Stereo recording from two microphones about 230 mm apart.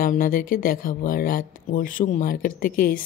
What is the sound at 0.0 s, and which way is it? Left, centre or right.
Speech, left.